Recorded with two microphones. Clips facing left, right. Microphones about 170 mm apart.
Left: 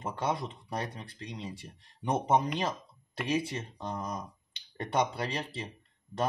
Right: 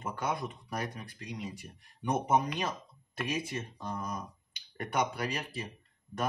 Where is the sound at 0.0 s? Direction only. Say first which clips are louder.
Left 2 dB; 30° left (ahead or behind).